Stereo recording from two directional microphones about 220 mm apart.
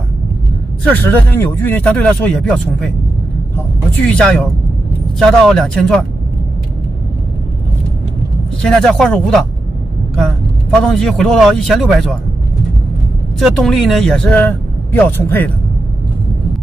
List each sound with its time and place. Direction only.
0.8 s speech: 10° left (ahead or behind)
4.1 s speech: 5° left (ahead or behind)
8.6 s speech: centre (ahead or behind)
13.4 s speech: centre (ahead or behind)